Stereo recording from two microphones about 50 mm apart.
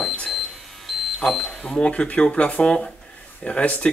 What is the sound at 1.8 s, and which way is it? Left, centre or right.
Speech, left.